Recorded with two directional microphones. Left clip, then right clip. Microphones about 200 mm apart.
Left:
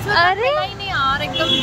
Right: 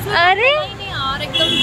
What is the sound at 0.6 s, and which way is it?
Vehicle, 10° left (ahead or behind).